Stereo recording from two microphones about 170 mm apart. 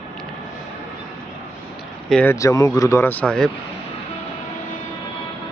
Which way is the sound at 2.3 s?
20° left (ahead or behind).